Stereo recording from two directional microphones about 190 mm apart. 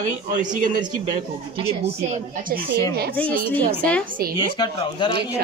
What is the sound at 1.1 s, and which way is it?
Speech, 35° right (ahead or behind).